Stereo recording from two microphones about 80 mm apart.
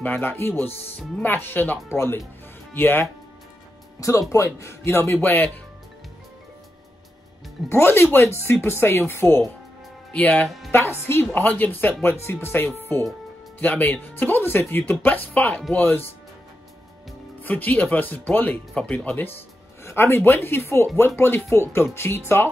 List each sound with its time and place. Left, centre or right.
0.0 s speech: left
4.0 s speech: left
7.7 s speech: left
10.1 s speech: centre
10.7 s speech: left
17.4 s speech: left